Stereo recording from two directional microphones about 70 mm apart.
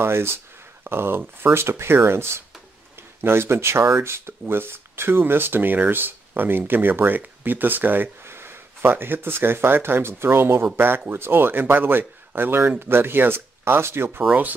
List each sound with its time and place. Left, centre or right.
0.0 s speech: right